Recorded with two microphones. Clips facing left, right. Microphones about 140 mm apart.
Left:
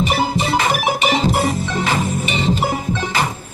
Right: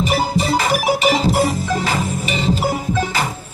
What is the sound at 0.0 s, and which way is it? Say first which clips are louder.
Music: even; 40° right (ahead or behind).